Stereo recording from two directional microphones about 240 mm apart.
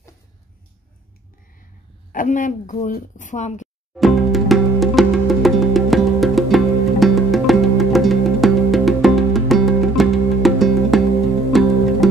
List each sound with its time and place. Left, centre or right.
2.1 s a woman's voice: left
3.9 s music: centre